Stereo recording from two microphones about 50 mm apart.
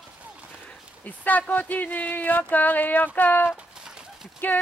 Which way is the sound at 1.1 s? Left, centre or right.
Left.